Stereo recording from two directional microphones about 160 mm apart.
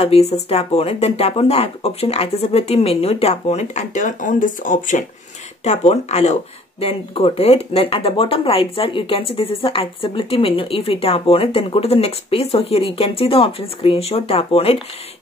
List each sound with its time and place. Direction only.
0.0 s speech: 40° left (ahead or behind); by 5.0 s 55° left (ahead or behind)
5.6 s speech: 45° left (ahead or behind)